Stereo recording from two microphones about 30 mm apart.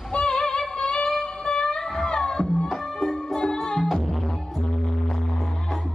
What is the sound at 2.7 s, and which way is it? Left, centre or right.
Music, centre.